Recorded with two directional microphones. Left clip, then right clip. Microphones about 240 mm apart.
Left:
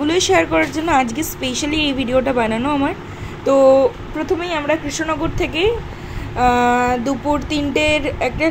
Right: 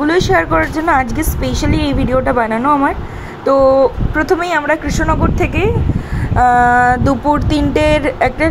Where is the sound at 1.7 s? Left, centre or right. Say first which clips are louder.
Right 1 dB; right.